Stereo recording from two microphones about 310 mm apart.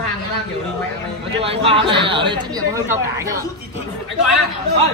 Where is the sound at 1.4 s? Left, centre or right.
Centre.